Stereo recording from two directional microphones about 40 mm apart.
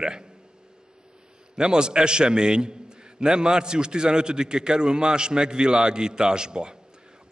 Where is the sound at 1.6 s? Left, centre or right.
Right.